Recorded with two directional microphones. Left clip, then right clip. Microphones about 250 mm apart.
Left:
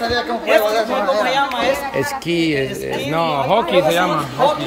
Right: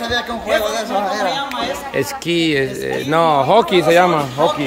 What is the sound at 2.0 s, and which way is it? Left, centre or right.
Speech, centre.